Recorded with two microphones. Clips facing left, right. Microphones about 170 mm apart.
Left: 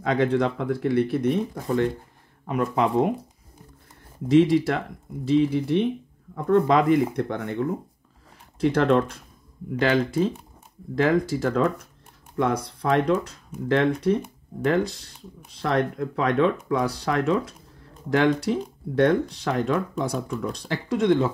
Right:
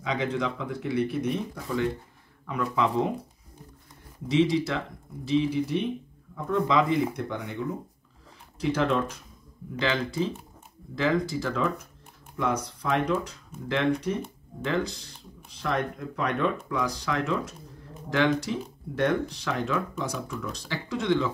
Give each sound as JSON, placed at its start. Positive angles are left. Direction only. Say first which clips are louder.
{"t": 0.0, "sound": "speech", "louder": "left 7 dB", "side_deg": 55}
{"t": 4.3, "sound": "speech", "louder": "left 6 dB", "side_deg": 50}
{"t": 19.0, "sound": "speech", "louder": "left 2 dB", "side_deg": 50}